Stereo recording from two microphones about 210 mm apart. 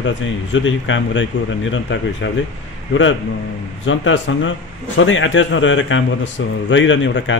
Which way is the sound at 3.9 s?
65° left (ahead or behind).